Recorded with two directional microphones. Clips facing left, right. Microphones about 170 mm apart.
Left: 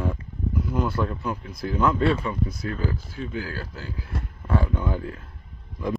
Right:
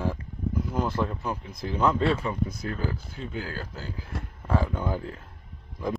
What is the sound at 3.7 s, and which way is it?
Speech, 40° right (ahead or behind).